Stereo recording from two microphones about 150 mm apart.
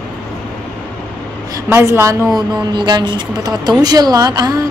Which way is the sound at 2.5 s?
30° right (ahead or behind).